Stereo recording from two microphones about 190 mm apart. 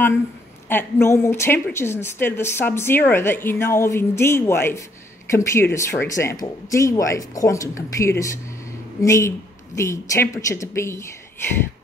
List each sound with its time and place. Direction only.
0.7 s a woman's voice: 10° left (ahead or behind)